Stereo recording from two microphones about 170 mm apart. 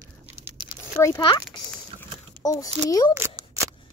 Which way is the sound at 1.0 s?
15° left (ahead or behind).